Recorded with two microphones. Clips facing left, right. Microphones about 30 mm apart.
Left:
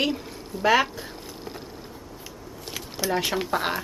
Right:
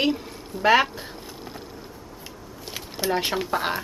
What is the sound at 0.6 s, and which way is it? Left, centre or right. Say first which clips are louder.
Speech: right 2 dB; centre.